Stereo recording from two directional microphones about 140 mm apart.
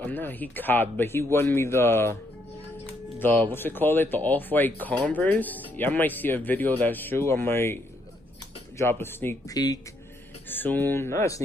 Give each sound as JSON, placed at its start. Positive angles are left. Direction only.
{"t": 0.0, "sound": "speech", "side_deg": 15}
{"t": 2.9, "sound": "music", "side_deg": 15}
{"t": 3.5, "sound": "speech", "side_deg": 15}